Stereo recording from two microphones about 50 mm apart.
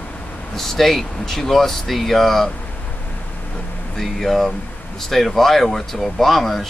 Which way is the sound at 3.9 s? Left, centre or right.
Centre.